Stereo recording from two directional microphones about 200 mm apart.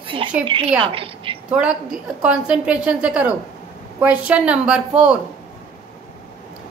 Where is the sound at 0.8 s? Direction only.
25° right (ahead or behind).